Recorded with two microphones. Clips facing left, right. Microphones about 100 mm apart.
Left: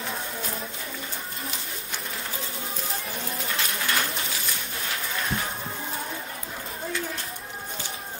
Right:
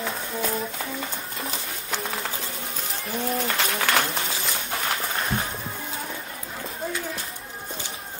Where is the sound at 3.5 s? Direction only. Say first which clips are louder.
Right 4 dB; 75° right (ahead or behind).